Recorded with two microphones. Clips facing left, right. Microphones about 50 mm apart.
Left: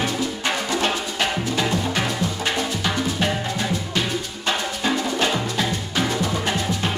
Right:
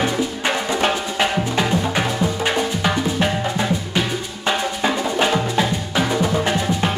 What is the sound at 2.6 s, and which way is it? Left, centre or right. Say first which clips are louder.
Drum: right 4 dB; centre.